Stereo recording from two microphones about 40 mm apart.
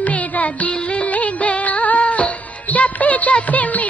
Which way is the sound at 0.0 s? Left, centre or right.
Left.